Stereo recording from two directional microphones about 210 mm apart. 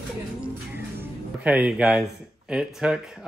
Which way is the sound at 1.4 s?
5° right (ahead or behind).